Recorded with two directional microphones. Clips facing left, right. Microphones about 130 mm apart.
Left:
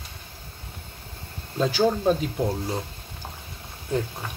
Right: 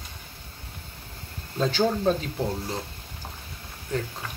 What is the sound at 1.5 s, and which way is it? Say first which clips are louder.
Speech: left 2 dB; 10° left (ahead or behind).